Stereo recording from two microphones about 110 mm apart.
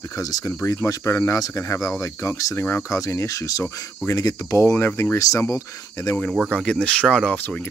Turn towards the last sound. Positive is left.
turn(degrees=15)  # may be behind; listen again after turning